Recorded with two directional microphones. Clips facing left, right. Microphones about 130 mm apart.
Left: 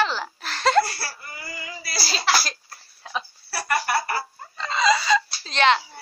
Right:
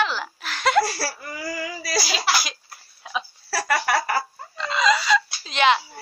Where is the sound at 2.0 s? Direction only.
10° right (ahead or behind).